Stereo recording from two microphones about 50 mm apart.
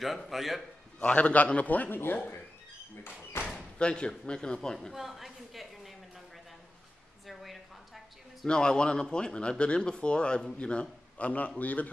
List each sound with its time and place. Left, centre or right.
0.0 s a man's voice: centre
0.9 s a man's voice: left
3.3 s a sound: left
3.7 s speech: centre
4.9 s a sound: centre
8.5 s speech: centre